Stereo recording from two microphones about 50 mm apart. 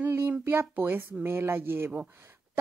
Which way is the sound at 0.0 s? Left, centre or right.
Right.